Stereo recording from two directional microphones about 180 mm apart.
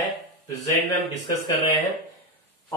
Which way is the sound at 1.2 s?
20° left (ahead or behind).